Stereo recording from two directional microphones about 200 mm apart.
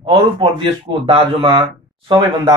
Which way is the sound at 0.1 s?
25° right (ahead or behind).